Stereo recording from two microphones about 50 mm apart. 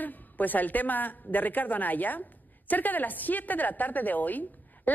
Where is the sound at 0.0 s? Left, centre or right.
Left.